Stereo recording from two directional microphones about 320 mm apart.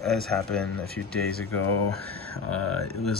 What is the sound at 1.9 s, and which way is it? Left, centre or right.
Speech, right.